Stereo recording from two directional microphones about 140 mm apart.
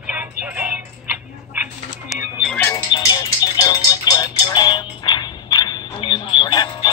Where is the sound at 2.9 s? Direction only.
30° left (ahead or behind).